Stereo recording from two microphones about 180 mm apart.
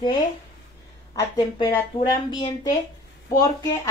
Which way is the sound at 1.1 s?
20° left (ahead or behind).